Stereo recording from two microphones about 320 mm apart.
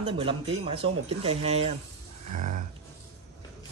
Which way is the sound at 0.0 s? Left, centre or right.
Centre.